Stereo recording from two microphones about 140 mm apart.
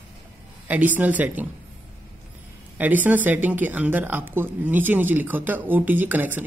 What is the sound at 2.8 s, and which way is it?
A man's voice, 10° right (ahead or behind).